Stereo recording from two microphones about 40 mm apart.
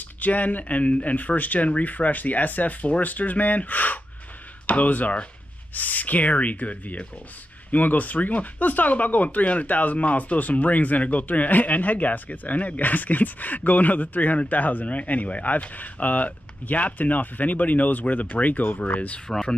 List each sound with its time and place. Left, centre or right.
0.2 s speech: left
18.9 s speech: left
19.2 s speech: centre